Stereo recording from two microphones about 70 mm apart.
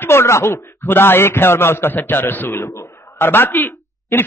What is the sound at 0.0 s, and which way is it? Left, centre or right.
A man's voice, left.